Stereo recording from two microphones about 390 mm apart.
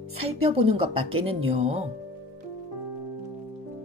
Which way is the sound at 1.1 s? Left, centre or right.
Right.